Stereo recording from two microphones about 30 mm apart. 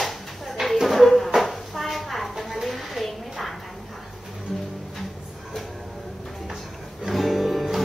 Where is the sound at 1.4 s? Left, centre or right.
Centre.